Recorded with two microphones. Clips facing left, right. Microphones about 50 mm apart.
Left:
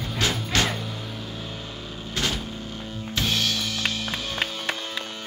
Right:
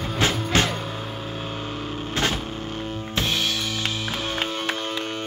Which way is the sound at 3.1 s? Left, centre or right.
Centre.